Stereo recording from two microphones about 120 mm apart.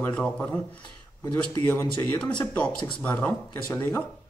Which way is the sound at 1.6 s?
15° left (ahead or behind).